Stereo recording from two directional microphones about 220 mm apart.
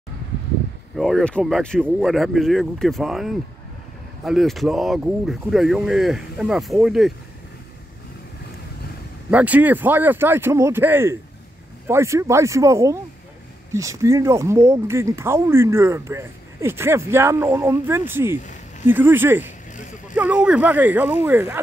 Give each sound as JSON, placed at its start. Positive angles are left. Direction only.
{"t": 0.9, "sound": "speech", "side_deg": 0}
{"t": 9.3, "sound": "speech", "side_deg": -5}
{"t": 19.7, "sound": "vehicle", "side_deg": 35}
{"t": 20.2, "sound": "speech", "side_deg": -5}